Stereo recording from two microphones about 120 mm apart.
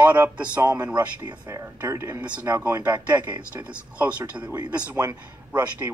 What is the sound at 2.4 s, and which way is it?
A man's voice, 20° right (ahead or behind).